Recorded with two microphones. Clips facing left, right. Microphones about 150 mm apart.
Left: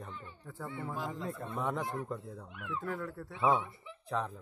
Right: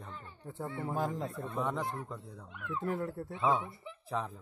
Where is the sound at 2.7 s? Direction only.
25° right (ahead or behind).